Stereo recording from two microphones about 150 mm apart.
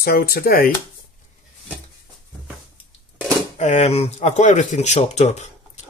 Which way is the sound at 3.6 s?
50° left (ahead or behind).